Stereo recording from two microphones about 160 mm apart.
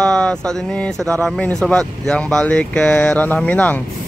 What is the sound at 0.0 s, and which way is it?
Speech, 5° left (ahead or behind).